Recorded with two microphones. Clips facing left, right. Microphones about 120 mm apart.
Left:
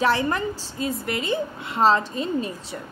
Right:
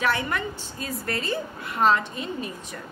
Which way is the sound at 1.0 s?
20° left (ahead or behind).